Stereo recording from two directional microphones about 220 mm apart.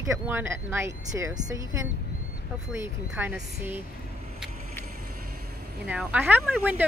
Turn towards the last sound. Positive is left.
turn(degrees=-10)  # may be behind; listen again after turning